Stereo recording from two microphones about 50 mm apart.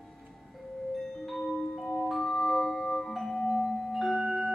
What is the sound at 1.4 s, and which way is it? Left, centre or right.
Music, centre.